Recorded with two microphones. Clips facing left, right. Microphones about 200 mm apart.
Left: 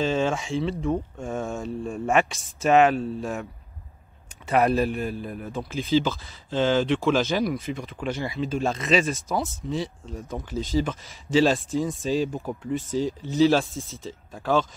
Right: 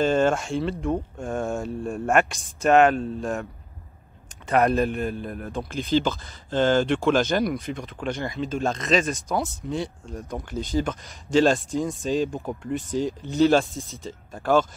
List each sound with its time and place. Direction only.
0.0 s a man's voice: centre (ahead or behind)
4.5 s a man's voice: 5° left (ahead or behind)